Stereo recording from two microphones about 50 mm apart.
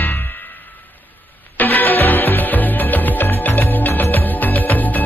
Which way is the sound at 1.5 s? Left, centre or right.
Left.